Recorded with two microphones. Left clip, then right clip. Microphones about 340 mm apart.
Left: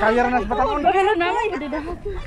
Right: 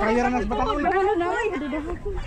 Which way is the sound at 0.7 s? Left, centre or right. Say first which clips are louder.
Left 4 dB; left.